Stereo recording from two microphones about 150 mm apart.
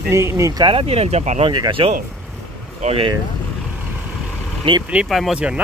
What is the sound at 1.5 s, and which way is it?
Speech, 30° right (ahead or behind).